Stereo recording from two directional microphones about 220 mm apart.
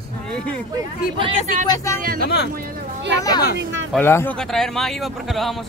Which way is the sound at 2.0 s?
40° right (ahead or behind).